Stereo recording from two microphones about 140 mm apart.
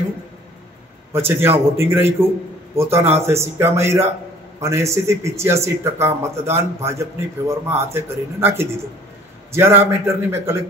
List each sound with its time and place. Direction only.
1.1 s a man's voice: 15° right (ahead or behind)